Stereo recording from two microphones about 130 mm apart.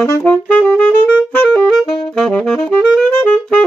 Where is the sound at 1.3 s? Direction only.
5° left (ahead or behind).